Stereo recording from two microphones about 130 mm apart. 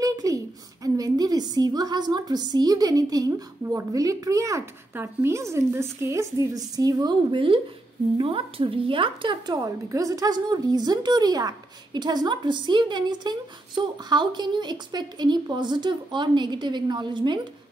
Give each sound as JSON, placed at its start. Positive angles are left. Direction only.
{"t": 0.0, "sound": "a sound", "side_deg": -25}
{"t": 0.8, "sound": "a woman's voice", "side_deg": -30}
{"t": 9.6, "sound": "a woman's voice", "side_deg": -25}